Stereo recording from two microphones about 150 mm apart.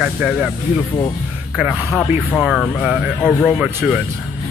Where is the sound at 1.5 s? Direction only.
10° right (ahead or behind).